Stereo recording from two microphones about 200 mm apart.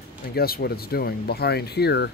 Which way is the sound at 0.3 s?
50° left (ahead or behind).